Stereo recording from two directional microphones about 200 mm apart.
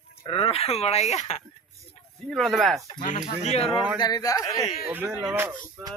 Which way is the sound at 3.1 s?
30° left (ahead or behind).